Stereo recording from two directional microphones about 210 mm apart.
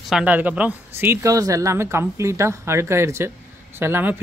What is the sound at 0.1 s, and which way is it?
Speech, 5° right (ahead or behind).